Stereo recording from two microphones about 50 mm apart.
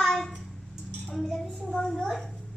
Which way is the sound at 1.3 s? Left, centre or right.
Centre.